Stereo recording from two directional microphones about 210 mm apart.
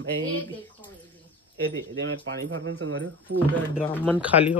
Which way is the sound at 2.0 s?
65° right (ahead or behind).